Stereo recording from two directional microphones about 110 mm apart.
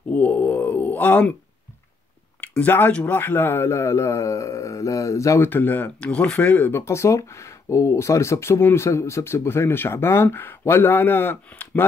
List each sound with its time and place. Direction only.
0.1 s speech: 15° left (ahead or behind)
2.4 s speech: 15° left (ahead or behind)
5.5 s speech: 15° left (ahead or behind)